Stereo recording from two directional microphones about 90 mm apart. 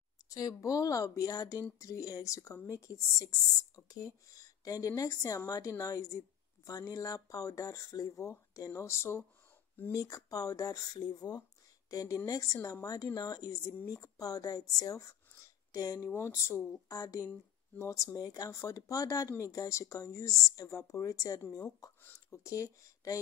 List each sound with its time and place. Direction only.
0.3 s speech: 40° left (ahead or behind)
9.9 s speech: 40° left (ahead or behind)
16.1 s speech: 30° left (ahead or behind)
22.0 s a sound: 20° left (ahead or behind)
22.4 s speech: 35° left (ahead or behind)